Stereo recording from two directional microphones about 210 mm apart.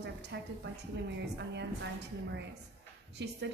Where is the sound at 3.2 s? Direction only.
55° right (ahead or behind).